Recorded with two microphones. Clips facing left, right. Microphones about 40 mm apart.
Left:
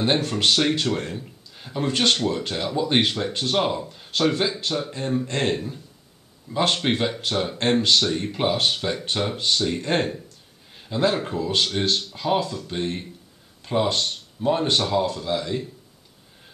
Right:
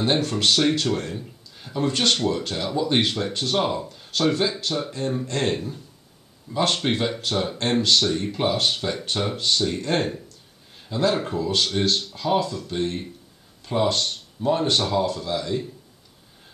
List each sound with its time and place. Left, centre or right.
0.0 s a man's voice: centre
5.5 s speech: centre